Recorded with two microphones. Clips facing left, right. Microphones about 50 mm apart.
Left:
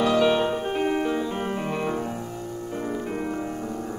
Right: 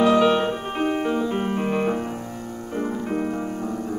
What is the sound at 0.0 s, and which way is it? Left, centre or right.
Music, centre.